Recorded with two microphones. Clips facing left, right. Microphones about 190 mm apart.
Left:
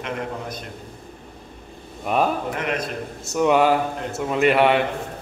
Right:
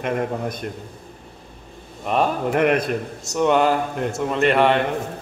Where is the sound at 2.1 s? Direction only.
5° left (ahead or behind).